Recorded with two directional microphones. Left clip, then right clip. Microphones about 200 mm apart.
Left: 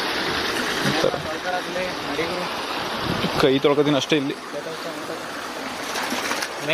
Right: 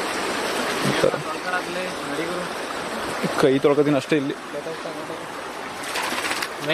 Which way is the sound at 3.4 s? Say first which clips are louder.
Right 1 dB; 5° right (ahead or behind).